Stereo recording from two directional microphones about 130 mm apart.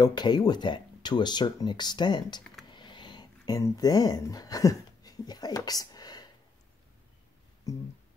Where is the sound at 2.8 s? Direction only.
35° left (ahead or behind).